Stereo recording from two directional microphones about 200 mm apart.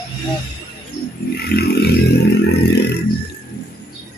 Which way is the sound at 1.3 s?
50° left (ahead or behind).